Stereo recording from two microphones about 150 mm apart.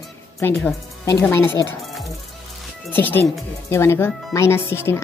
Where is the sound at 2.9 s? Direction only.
15° left (ahead or behind).